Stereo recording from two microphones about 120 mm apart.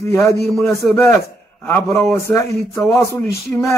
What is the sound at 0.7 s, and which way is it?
Speech, 25° left (ahead or behind).